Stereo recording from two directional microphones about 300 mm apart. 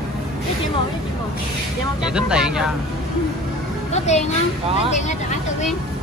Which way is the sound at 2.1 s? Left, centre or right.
Centre.